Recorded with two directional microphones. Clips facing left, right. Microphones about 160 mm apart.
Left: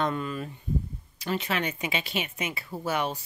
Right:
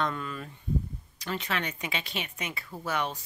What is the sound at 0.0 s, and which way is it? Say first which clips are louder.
Speech: left 3 dB; 15° left (ahead or behind).